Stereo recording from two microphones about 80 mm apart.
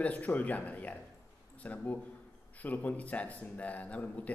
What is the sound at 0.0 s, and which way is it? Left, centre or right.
A man's voice, centre.